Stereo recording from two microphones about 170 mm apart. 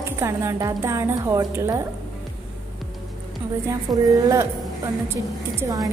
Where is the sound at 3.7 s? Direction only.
20° right (ahead or behind).